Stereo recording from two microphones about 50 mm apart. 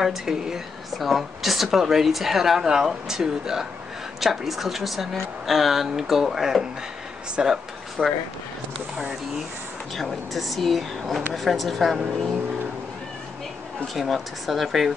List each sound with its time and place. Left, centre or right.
0.0 s a woman's voice: centre
8.0 s speech: right
9.9 s a woman's voice: centre
13.9 s a woman's voice: centre